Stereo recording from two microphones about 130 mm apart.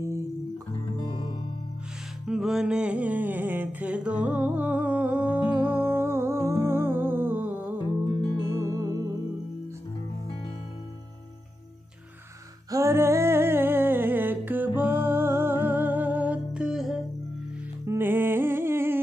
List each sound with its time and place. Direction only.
0.9 s music: 35° left (ahead or behind)
2.2 s music: 5° right (ahead or behind); by 9.1 s 20° right (ahead or behind)
12.7 s music: 20° right (ahead or behind); by 17.0 s 5° right (ahead or behind)
17.8 s music: 15° right (ahead or behind)